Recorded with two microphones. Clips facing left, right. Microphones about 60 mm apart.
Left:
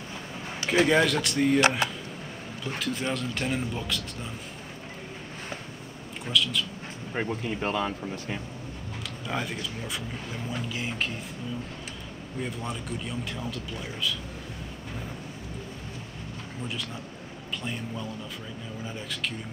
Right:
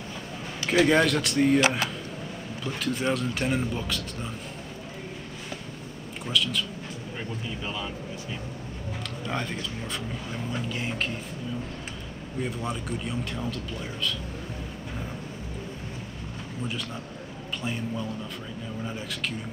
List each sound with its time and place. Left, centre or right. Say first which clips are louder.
0.8 s speech: right 1 dB; centre
6.2 s speech: even; centre
7.2 s speech: left 7 dB; left
9.3 s speech: even; centre
12.4 s speech: right 3 dB; centre
17.6 s speech: right 4 dB; centre